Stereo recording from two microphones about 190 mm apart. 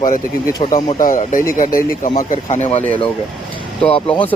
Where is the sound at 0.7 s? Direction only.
40° left (ahead or behind).